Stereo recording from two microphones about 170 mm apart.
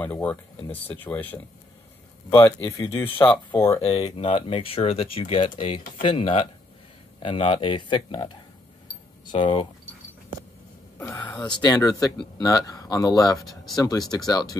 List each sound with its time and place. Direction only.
0.0 s speech: 10° left (ahead or behind)
3.0 s speech: 10° left (ahead or behind)
3.8 s speech: 30° left (ahead or behind)
8.8 s a sound: 25° left (ahead or behind)
11.0 s speech: 10° left (ahead or behind)
11.6 s speech: 25° left (ahead or behind)
13.4 s speech: centre (ahead or behind)
13.7 s speech: 20° left (ahead or behind)